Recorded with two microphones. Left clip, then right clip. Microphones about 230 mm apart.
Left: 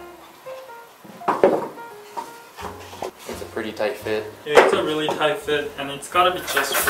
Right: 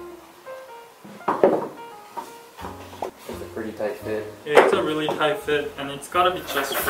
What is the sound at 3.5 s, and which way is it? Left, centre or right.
Speech, centre.